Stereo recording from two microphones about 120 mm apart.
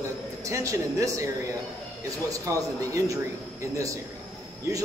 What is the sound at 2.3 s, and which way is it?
Speech, 30° right (ahead or behind).